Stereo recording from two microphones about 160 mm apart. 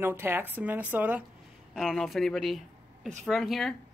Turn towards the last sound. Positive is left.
turn(degrees=0)  # may be behind; listen again after turning